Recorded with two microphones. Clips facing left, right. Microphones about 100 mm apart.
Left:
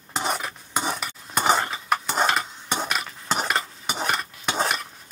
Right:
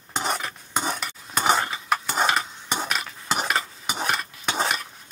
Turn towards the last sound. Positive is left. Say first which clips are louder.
# left 1 dB
turn(degrees=0)  # may be behind; listen again after turning